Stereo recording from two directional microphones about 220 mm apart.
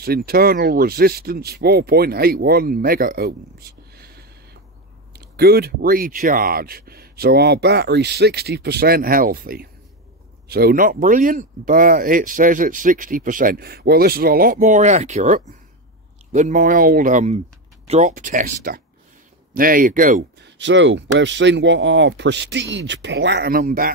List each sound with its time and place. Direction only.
0.0 s speech: 45° right (ahead or behind)
5.1 s speech: 45° right (ahead or behind)